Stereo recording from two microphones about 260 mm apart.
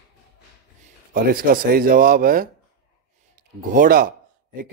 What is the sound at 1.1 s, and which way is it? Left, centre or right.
A man's voice, right.